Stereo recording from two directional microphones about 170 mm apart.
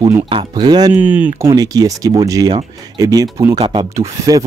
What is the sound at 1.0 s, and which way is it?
Speech, 10° right (ahead or behind).